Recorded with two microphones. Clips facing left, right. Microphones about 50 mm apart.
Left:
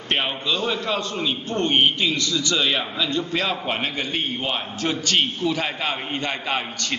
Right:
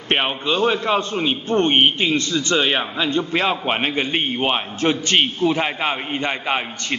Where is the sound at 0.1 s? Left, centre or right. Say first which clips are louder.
Right 4 dB; right.